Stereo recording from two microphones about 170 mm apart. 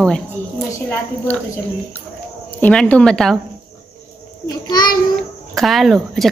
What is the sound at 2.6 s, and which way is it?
Speech, 5° left (ahead or behind).